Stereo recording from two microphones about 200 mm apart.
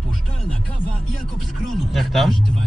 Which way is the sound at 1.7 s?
Centre (ahead or behind).